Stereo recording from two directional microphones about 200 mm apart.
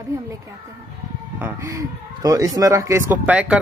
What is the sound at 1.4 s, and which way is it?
Speech, 15° right (ahead or behind).